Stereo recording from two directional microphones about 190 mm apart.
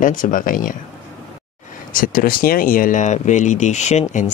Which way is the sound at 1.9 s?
50° left (ahead or behind).